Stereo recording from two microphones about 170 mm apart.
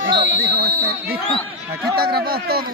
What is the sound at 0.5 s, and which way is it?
Speech, 65° right (ahead or behind).